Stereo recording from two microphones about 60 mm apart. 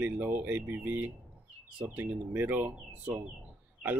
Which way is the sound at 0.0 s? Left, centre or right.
Right.